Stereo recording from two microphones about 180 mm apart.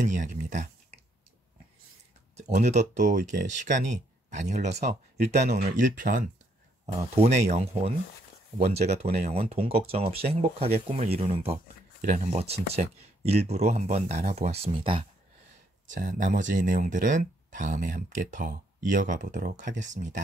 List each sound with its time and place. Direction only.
0.0 s speech: 45° right (ahead or behind)
2.3 s speech: 40° right (ahead or behind)
15.9 s speech: 45° right (ahead or behind)